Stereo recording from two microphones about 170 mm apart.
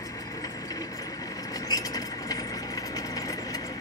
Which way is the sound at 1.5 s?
20° left (ahead or behind).